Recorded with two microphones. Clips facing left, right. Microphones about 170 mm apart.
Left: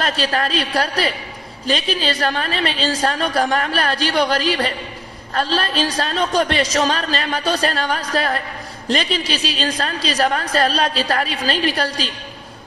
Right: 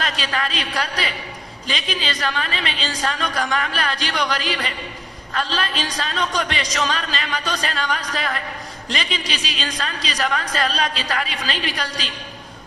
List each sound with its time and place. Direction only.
0.0 s a woman's voice: 40° left (ahead or behind)